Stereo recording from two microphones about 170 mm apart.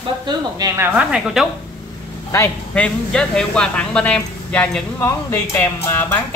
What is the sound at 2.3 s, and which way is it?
Speech, 10° left (ahead or behind).